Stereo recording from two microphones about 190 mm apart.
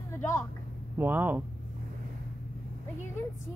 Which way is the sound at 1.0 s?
10° right (ahead or behind).